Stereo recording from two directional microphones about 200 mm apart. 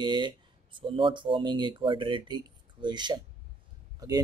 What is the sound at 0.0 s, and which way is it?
Speech, 20° right (ahead or behind).